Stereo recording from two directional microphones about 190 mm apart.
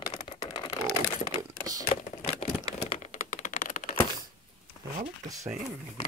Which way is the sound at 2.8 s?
35° left (ahead or behind).